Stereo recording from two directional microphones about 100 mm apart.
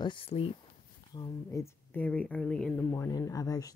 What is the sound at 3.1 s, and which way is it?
Speech, 35° left (ahead or behind).